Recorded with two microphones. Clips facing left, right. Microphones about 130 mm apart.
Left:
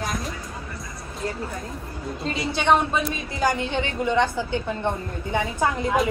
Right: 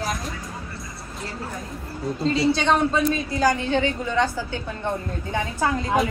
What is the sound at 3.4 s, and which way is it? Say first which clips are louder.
A woman's voice: right 2 dB; 20° left (ahead or behind).